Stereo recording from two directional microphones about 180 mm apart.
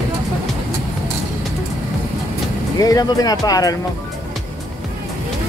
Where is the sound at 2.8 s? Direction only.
20° left (ahead or behind).